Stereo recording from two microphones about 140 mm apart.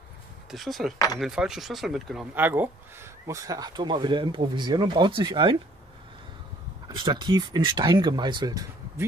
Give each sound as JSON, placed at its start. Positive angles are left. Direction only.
{"t": 0.5, "sound": "speech", "side_deg": 0}
{"t": 0.9, "sound": "speech", "side_deg": 25}
{"t": 1.2, "sound": "speech", "side_deg": -5}
{"t": 2.3, "sound": "speech", "side_deg": -15}
{"t": 7.0, "sound": "speech", "side_deg": -35}